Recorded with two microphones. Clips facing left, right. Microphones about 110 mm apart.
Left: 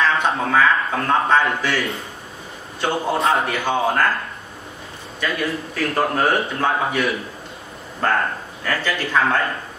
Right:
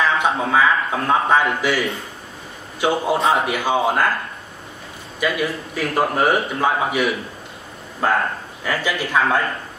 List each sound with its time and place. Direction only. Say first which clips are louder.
0.0 s a man's voice: even; 10° right (ahead or behind)
2.8 s a man's voice: right 2 dB; 5° right (ahead or behind)
5.2 s a man's voice: right 2 dB; 10° right (ahead or behind)